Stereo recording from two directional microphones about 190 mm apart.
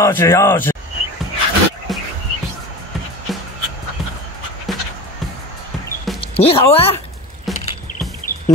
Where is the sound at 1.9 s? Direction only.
Centre (ahead or behind).